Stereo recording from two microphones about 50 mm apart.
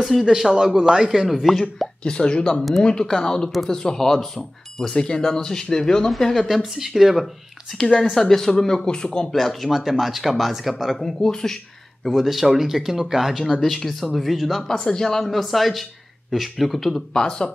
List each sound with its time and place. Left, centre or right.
0.3 s speech: centre
2.0 s speech: centre
7.7 s speech: centre
9.3 s speech: centre
13.4 s speech: centre
14.7 s speech: centre